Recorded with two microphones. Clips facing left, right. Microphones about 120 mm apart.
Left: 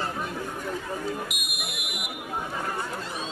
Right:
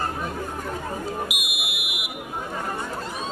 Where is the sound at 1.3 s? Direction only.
5° right (ahead or behind).